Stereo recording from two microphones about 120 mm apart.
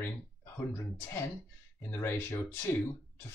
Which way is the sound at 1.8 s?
20° left (ahead or behind).